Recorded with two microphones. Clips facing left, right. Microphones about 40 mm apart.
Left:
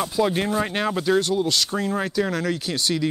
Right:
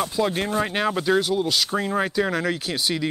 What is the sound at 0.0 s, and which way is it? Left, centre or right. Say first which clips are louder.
Speech: left 1 dB; centre.